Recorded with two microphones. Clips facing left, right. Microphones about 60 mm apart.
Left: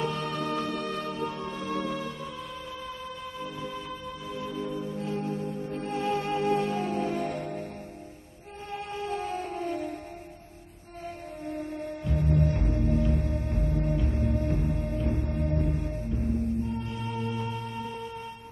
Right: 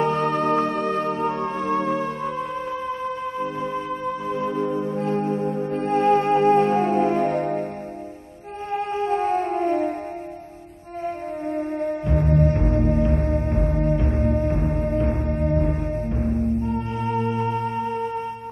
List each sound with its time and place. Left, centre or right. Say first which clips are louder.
0.0 s music: right 10 dB; right
8.7 s music: right 10 dB; right
11.1 s music: right 9 dB; right
16.3 s music: right 7 dB; right